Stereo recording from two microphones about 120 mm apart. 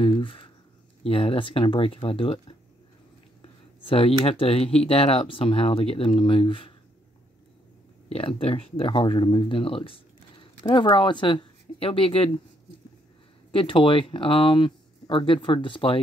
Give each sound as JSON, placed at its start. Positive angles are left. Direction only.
{"t": 0.0, "sound": "speech", "side_deg": 45}
{"t": 3.8, "sound": "speech", "side_deg": 50}
{"t": 8.1, "sound": "speech", "side_deg": 50}
{"t": 13.5, "sound": "speech", "side_deg": 45}